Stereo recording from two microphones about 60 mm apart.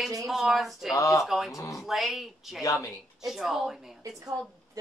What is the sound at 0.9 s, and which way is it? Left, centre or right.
Speech, left.